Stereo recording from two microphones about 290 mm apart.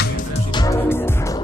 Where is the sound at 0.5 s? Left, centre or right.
Centre.